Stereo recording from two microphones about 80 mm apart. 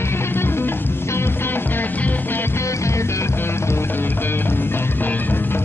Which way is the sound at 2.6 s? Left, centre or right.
Left.